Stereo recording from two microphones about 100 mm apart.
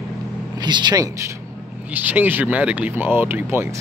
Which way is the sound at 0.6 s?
50° right (ahead or behind).